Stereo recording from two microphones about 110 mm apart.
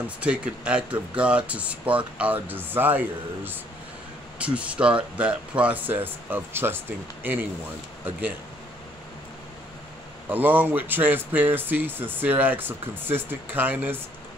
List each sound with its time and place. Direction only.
0.0 s speech: 10° right (ahead or behind)
10.3 s speech: 15° right (ahead or behind)